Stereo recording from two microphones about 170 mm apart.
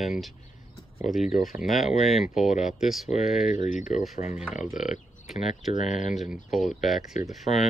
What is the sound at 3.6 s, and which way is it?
Speech, 45° left (ahead or behind).